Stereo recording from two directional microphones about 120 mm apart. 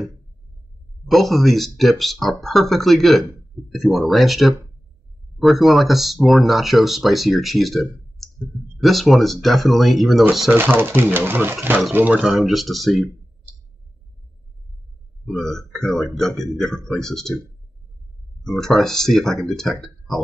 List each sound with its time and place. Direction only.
1.0 s speech: centre (ahead or behind)
10.5 s speech: 20° right (ahead or behind); by 13.1 s centre (ahead or behind)
15.2 s speech: centre (ahead or behind)
18.4 s speech: 5° left (ahead or behind)